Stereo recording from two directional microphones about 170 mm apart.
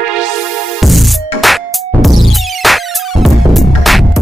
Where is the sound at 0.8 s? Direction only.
Centre (ahead or behind).